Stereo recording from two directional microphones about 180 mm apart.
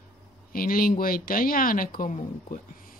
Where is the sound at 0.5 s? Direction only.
55° left (ahead or behind).